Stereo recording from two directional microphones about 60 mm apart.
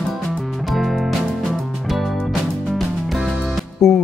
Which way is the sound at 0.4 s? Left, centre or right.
Centre.